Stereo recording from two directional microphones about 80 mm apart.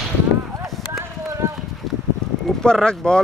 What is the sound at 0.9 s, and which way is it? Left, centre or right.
Run, right.